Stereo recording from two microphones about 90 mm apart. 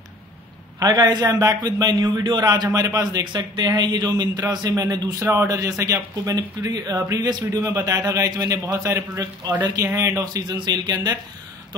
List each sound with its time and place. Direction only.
0.7 s a man's voice: 45° right (ahead or behind)
5.2 s speech: 30° right (ahead or behind); by 7.6 s 45° right (ahead or behind)
7.6 s speech: 35° right (ahead or behind)
9.2 s a man's voice: 45° right (ahead or behind)
9.8 s a man's voice: 35° right (ahead or behind); by 11.1 s 50° right (ahead or behind)